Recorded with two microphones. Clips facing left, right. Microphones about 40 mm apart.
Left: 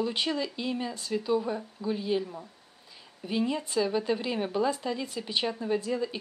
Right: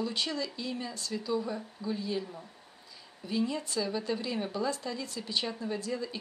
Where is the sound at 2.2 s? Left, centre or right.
Centre.